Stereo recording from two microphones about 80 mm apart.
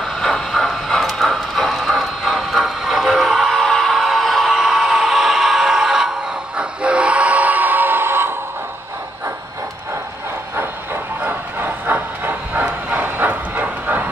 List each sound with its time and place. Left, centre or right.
0.0 s train: centre; by 8.4 s right
11.2 s train: right